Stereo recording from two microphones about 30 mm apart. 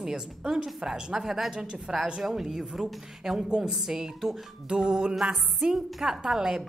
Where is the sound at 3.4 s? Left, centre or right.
Right.